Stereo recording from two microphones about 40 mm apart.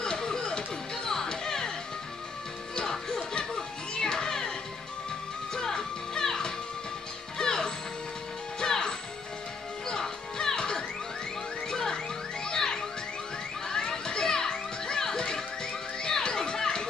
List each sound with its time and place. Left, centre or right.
0.0 s music: centre
2.7 s music: centre
5.5 s music: centre
13.7 s children playing: centre